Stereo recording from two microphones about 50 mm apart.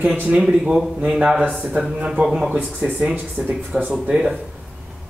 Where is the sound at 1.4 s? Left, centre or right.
Centre.